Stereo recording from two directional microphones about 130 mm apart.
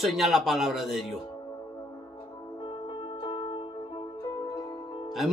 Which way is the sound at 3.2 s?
40° left (ahead or behind).